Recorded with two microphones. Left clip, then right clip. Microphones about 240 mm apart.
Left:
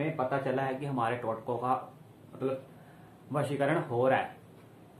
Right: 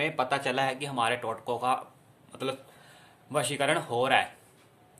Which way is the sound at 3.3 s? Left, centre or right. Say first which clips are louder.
Right 3 dB; right.